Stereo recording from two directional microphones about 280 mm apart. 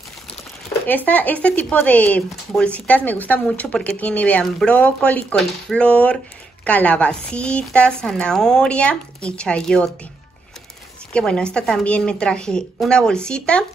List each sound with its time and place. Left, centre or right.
0.8 s speech: centre
11.1 s speech: centre